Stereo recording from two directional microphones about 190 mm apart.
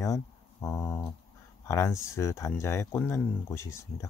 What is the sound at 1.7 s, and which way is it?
Speech, 15° left (ahead or behind).